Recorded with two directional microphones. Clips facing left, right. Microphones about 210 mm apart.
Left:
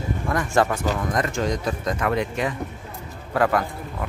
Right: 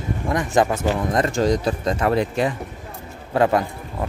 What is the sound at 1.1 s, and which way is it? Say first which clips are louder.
A man's voice: right 7 dB; 30° right (ahead or behind).